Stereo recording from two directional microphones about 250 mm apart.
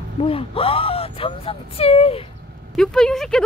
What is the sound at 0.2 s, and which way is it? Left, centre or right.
Speech, left.